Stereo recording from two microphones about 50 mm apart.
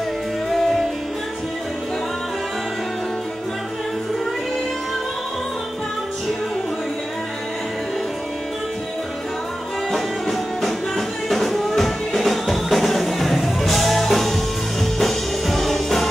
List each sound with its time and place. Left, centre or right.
0.5 s music: centre
9.9 s music: centre